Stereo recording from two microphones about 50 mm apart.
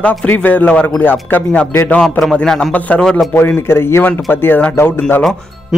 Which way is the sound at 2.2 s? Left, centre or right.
Centre.